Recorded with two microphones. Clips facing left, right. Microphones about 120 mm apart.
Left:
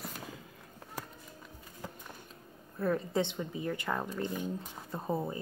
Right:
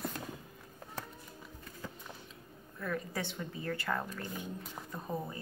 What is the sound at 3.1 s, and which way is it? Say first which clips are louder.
Speech: left 7 dB; 20° left (ahead or behind).